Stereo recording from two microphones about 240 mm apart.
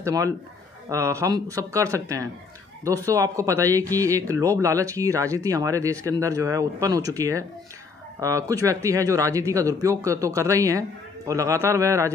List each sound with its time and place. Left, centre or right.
0.0 s a man's voice: centre